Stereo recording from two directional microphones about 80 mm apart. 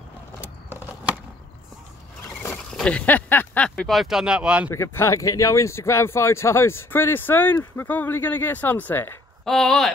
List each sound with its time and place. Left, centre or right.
2.5 s speech: centre
3.6 s speech: centre
3.9 s speech: centre
4.6 s speech: left
9.4 s speech: centre